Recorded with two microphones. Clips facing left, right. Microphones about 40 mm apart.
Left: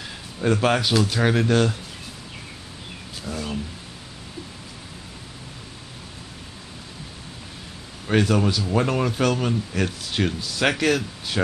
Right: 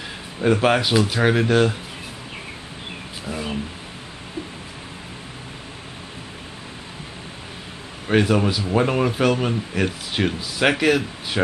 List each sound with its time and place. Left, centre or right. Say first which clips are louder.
0.4 s speech: right 3 dB; centre
3.3 s a sound: right 2 dB; centre
8.1 s speech: right 2 dB; centre